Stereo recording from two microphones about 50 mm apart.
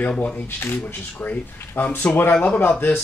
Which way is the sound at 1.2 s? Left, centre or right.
Left.